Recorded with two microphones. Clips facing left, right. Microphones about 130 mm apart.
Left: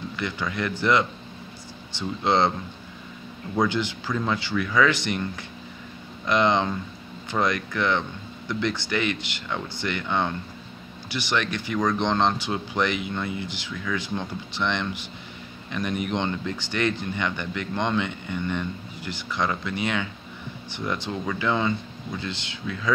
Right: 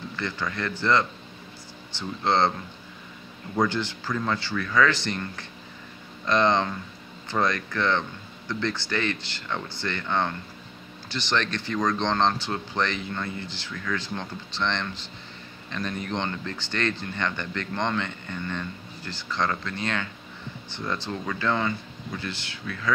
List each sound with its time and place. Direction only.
0.1 s speech: 15° left (ahead or behind)
3.5 s speech: 15° left (ahead or behind)